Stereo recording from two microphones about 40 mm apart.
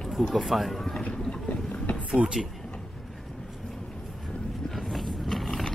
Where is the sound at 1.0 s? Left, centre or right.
Left.